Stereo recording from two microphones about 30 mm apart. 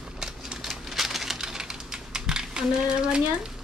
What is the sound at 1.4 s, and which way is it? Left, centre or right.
Typing, right.